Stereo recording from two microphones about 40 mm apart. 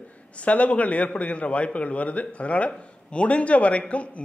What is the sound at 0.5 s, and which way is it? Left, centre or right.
A man's voice, left.